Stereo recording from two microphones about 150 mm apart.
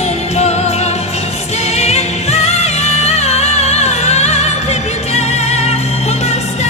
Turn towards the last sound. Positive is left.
turn(degrees=45)  # may be behind; listen again after turning